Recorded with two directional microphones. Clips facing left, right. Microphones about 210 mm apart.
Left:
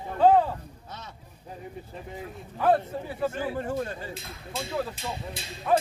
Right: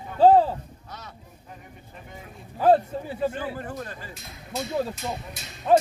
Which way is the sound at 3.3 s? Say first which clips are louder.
Left 3 dB; 25° left (ahead or behind).